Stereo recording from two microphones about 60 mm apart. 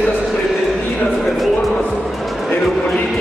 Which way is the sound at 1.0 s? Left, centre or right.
Centre.